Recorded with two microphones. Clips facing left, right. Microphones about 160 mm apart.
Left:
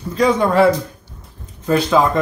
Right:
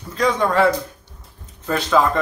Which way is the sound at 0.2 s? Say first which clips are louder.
Left 4 dB; 10° left (ahead or behind).